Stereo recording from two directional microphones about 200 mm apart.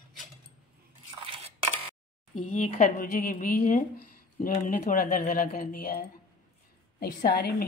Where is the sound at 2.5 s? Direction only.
40° left (ahead or behind).